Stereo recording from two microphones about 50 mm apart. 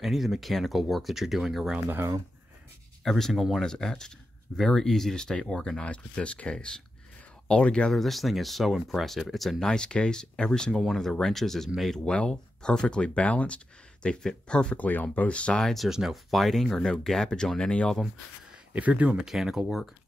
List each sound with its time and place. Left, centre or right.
0.0 s speech: centre
1.9 s speech: right
3.0 s speech: centre
3.6 s speech: centre
7.9 s speech: centre
9.7 s speech: centre
14.8 s speech: left
15.6 s speech: centre
15.9 s speech: centre
16.3 s speech: centre
18.7 s speech: right
19.2 s speech: centre